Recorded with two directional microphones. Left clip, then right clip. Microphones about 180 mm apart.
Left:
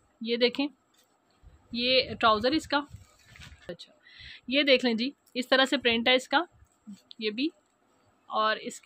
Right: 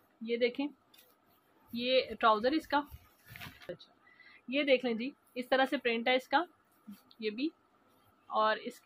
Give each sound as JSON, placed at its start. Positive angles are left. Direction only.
{"t": 0.2, "sound": "speech", "side_deg": 55}
{"t": 1.7, "sound": "a woman's voice", "side_deg": 35}
{"t": 8.3, "sound": "speech", "side_deg": 25}